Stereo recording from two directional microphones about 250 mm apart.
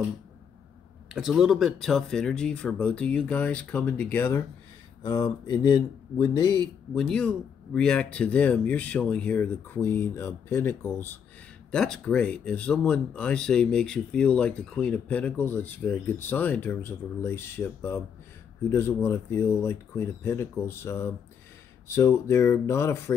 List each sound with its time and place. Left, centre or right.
1.1 s speech: centre
7.0 s speech: centre